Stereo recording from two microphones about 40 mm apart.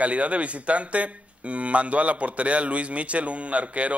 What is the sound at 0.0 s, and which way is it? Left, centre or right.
Speech, right.